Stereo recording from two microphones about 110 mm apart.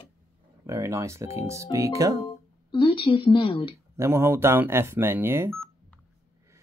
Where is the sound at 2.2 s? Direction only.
50° left (ahead or behind).